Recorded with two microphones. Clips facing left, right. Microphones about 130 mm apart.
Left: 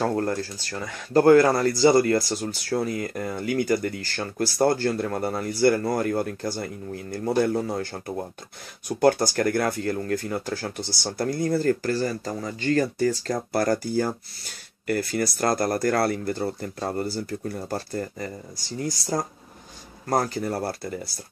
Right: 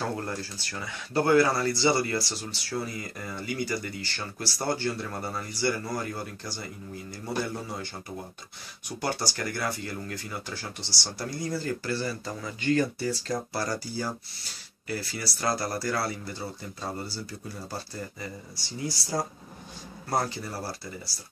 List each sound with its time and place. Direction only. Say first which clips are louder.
0.0 s speech: left 8 dB; 45° left (ahead or behind)